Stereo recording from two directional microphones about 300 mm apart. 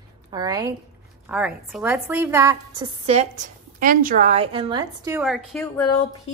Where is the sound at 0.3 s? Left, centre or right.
Centre.